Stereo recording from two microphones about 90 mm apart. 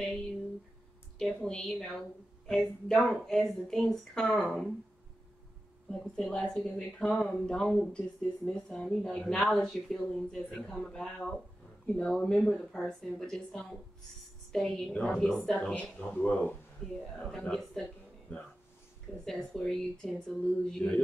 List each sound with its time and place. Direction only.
1.1 s a woman's voice: 5° left (ahead or behind)
5.9 s a woman's voice: 10° left (ahead or behind)
19.2 s a woman's voice: 5° left (ahead or behind)